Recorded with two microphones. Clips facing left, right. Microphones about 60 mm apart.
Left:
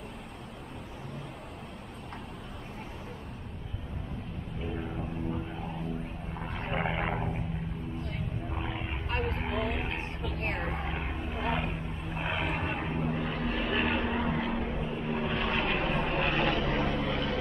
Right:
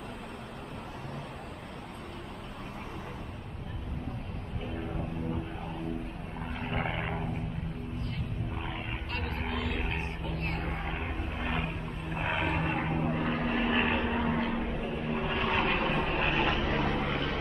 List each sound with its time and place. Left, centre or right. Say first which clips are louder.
4.7 s a sound: right 2 dB; centre
6.4 s vehicle: left 1 dB; centre
8.5 s vehicle: left 1 dB; centre
9.1 s vehicle: left 4 dB; centre
10.4 s a sound: left 4 dB; left
10.7 s vehicle: left 1 dB; centre
12.2 s vehicle: right 2 dB; centre
13.2 s vehicle: right 2 dB; right
13.9 s vehicle: right 1 dB; centre
16.6 s vehicle: even; right